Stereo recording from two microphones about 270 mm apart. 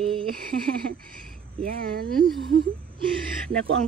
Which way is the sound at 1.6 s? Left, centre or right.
Right.